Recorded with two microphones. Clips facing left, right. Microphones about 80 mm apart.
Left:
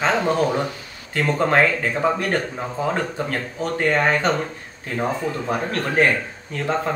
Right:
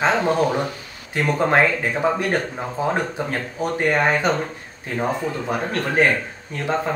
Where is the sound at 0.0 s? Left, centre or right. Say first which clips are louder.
Right 1 dB; centre.